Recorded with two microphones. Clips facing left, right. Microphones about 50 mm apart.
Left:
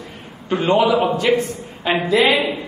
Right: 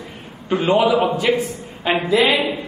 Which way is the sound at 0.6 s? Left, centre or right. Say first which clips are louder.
Even; centre.